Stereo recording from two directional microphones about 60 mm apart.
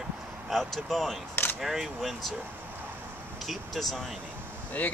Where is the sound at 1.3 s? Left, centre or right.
Left.